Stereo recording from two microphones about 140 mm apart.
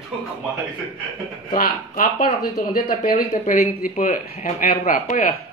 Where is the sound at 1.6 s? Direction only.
75° left (ahead or behind).